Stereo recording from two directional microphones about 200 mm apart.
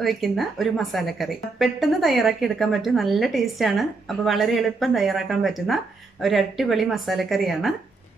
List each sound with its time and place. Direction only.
0.0 s a woman's voice: centre (ahead or behind)